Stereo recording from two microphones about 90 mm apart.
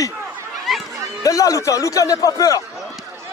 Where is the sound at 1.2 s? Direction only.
40° left (ahead or behind).